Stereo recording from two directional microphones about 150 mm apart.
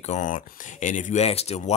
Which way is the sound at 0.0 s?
55° left (ahead or behind).